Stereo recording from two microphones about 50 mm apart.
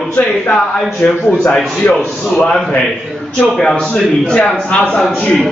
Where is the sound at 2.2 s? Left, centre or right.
Left.